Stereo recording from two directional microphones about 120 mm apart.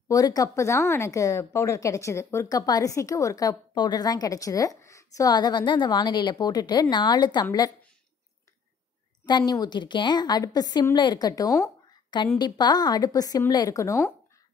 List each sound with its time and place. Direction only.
0.1 s speech: 30° left (ahead or behind)
9.5 s a woman's voice: 35° left (ahead or behind)